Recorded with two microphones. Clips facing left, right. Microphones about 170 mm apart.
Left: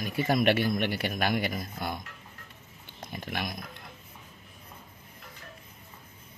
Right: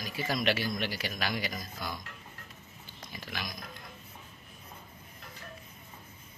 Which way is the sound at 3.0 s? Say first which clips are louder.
Left 6 dB; 55° left (ahead or behind).